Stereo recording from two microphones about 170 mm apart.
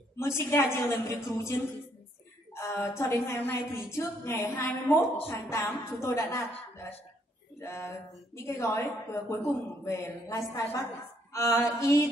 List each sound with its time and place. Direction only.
0.4 s a woman's voice: 15° left (ahead or behind)
7.6 s a woman's voice: 15° left (ahead or behind)